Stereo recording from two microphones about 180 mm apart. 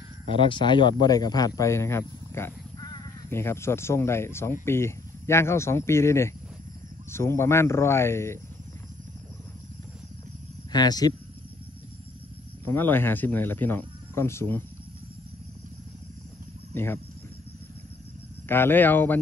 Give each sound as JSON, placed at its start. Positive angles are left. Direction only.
{"t": 0.3, "sound": "speech", "side_deg": 25}
{"t": 10.7, "sound": "speech", "side_deg": 20}
{"t": 12.6, "sound": "speech", "side_deg": 10}
{"t": 16.7, "sound": "speech", "side_deg": 10}
{"t": 18.5, "sound": "speech", "side_deg": 10}